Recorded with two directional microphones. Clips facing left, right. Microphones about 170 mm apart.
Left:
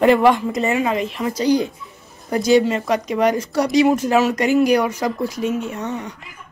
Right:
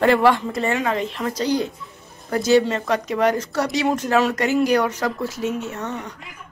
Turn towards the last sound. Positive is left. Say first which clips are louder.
# left 3 dB
turn(degrees=15)  # may be behind; listen again after turning